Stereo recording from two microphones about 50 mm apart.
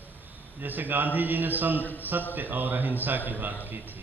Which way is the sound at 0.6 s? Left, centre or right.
Right.